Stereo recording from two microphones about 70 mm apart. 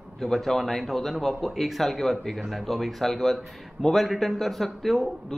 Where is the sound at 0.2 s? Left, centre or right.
Centre.